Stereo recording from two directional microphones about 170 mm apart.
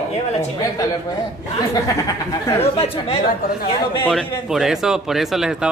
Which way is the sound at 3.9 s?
10° left (ahead or behind).